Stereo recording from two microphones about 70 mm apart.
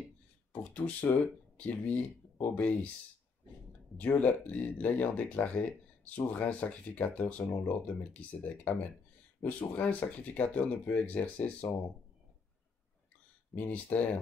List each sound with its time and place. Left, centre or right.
0.5 s speech: centre
3.9 s speech: left
9.4 s speech: centre
13.6 s speech: left